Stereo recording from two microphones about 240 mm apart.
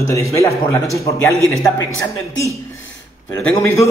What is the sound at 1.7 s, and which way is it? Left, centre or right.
Speech, left.